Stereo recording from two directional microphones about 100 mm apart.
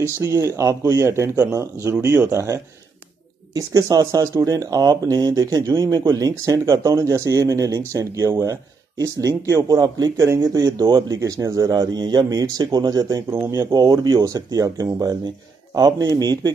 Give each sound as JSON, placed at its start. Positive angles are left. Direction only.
{"t": 0.0, "sound": "speech", "side_deg": -30}
{"t": 13.3, "sound": "speech", "side_deg": -30}